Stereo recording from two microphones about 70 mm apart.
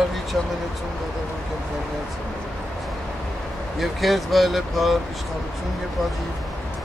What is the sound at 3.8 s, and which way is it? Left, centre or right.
Speech, centre.